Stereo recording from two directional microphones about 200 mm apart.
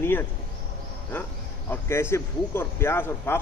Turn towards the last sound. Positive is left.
turn(degrees=10)  # may be behind; listen again after turning